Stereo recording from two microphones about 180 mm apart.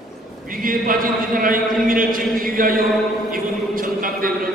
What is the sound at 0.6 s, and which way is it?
A man's voice, 50° right (ahead or behind).